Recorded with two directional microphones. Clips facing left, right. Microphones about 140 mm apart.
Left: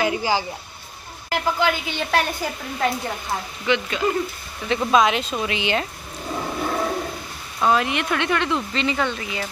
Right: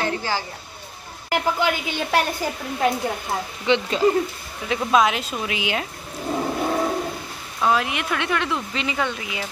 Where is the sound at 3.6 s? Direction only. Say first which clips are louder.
Right 3 dB; 30° right (ahead or behind).